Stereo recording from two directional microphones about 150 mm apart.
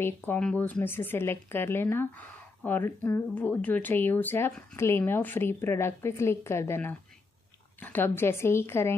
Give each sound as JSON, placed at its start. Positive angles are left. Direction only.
{"t": 0.0, "sound": "speech", "side_deg": 10}